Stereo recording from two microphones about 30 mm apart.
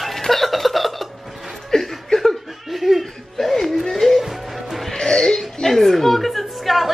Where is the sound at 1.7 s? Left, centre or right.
Centre.